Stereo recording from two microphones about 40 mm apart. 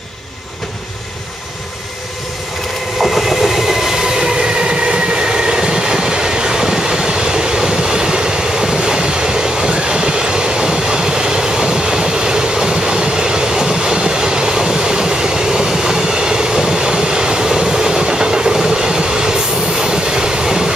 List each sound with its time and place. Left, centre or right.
3.0 s train: centre
4.6 s train: right